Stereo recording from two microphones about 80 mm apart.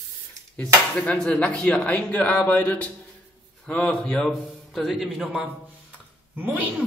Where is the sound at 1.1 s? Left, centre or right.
Centre.